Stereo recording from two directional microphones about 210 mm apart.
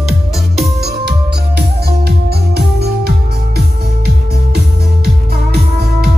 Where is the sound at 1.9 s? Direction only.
50° right (ahead or behind).